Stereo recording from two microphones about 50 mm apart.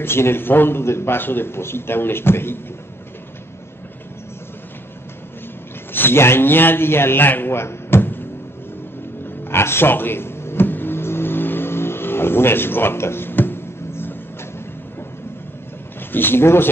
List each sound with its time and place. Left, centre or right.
0.0 s a man's voice: left
5.9 s a man's voice: left
9.2 s vehicle: left
16.1 s a man's voice: left